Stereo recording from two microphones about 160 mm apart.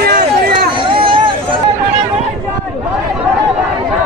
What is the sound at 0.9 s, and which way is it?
Chatter, 35° right (ahead or behind).